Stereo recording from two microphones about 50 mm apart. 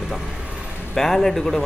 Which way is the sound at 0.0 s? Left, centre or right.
Centre.